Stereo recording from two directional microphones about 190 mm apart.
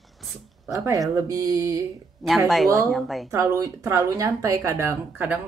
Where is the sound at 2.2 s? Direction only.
Centre (ahead or behind).